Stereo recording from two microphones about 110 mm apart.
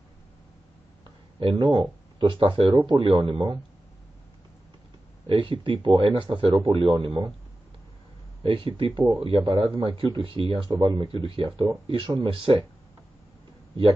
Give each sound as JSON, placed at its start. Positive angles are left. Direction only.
{"t": 1.4, "sound": "speech", "side_deg": -50}
{"t": 5.2, "sound": "speech", "side_deg": -50}
{"t": 8.4, "sound": "speech", "side_deg": -55}